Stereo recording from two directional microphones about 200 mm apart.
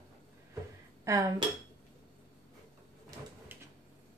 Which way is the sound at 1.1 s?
15° right (ahead or behind).